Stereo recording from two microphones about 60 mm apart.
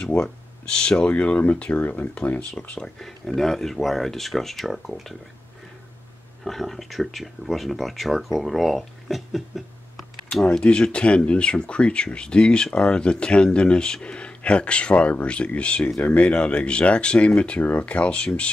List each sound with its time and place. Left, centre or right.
0.0 s a sound: left
0.7 s speech: centre
2.7 s speech: centre
6.4 s speech: centre
10.3 s speech: centre